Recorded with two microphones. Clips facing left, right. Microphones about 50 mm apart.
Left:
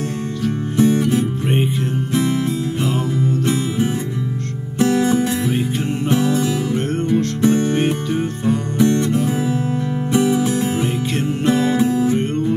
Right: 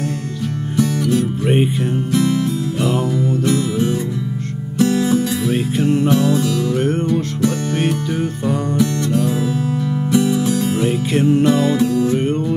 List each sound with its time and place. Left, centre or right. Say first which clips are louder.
0.7 s music: left 1 dB; left
5.5 s music: right 4 dB; centre; by 7.8 s left
7.8 s music: even; centre
8.7 s music: left 4 dB; left
10.7 s music: right 3 dB; centre
11.4 s music: right 1 dB; centre